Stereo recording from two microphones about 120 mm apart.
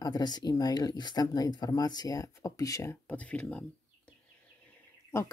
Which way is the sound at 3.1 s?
10° left (ahead or behind).